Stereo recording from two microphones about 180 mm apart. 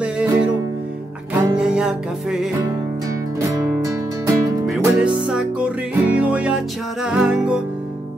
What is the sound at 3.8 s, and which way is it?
Music, 20° right (ahead or behind).